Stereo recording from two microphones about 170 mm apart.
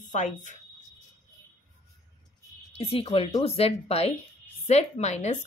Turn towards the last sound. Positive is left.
turn(degrees=40)  # may be behind; listen again after turning